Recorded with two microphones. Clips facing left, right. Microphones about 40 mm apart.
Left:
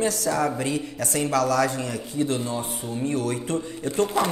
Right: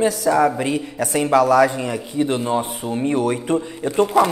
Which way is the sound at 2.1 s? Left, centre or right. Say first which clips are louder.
Right 4 dB; right.